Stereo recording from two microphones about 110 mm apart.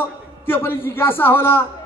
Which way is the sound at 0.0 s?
20° left (ahead or behind).